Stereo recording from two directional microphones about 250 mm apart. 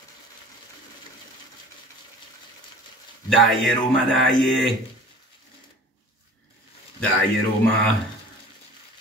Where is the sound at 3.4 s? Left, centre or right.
Centre.